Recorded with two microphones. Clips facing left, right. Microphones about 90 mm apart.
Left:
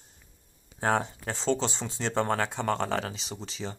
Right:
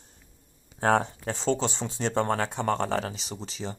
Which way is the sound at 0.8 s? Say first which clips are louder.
Right 3 dB; 35° right (ahead or behind).